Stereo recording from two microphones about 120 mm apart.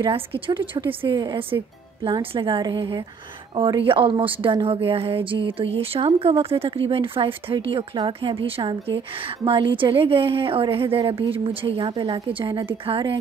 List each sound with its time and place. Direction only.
0.0 s a woman's voice: 45° right (ahead or behind)